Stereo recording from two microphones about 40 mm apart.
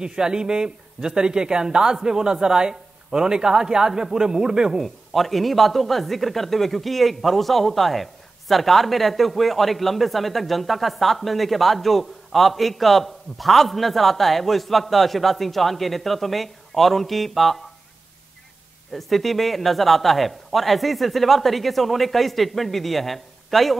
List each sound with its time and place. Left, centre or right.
0.0 s speech: centre
4.8 s a man's voice: centre
18.9 s a man's voice: centre